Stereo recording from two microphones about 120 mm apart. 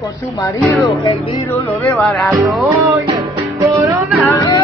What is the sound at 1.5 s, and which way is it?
Speech, 15° left (ahead or behind).